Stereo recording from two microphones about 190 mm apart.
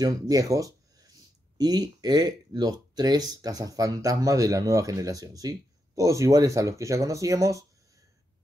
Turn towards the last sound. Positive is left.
turn(degrees=-15)  # may be behind; listen again after turning